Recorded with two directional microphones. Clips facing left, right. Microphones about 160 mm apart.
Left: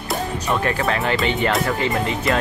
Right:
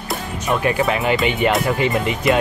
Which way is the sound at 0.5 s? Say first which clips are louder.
Right 4 dB; 15° right (ahead or behind).